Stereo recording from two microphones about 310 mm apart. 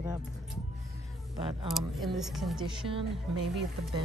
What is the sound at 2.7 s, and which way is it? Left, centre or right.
Speech, centre.